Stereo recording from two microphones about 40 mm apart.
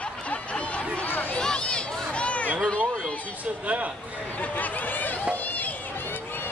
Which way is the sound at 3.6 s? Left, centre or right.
Right.